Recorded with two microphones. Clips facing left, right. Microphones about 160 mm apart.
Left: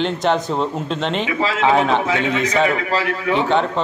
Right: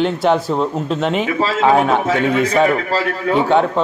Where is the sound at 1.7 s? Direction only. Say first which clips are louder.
Right 2 dB; 5° right (ahead or behind).